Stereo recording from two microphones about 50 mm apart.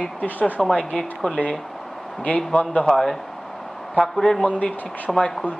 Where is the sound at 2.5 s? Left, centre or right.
Left.